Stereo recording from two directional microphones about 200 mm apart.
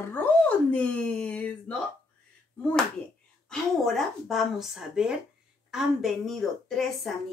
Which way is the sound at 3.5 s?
Centre (ahead or behind).